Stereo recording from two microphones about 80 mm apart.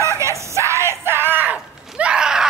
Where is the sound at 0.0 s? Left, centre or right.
Right.